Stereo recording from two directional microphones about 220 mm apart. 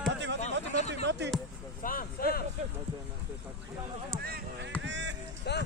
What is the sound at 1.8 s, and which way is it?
Speech, 40° left (ahead or behind).